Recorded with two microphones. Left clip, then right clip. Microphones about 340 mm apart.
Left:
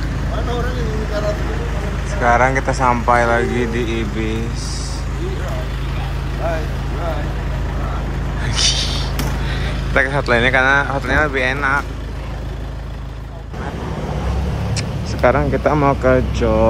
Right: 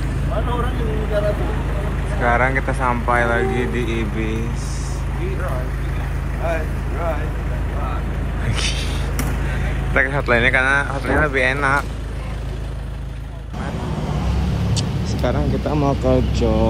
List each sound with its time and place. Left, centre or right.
2.2 s speech: centre
8.5 s a sound: centre
9.9 s speech: centre
15.2 s speech: centre
15.8 s speech: centre